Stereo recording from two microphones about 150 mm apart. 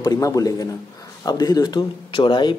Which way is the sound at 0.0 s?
25° left (ahead or behind).